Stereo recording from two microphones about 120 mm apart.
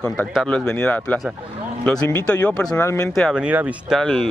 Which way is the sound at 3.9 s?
5° left (ahead or behind).